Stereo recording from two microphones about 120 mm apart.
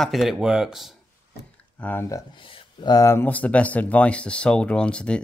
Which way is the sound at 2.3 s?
45° left (ahead or behind).